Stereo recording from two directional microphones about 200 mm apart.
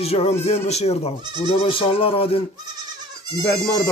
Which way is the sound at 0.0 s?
30° left (ahead or behind).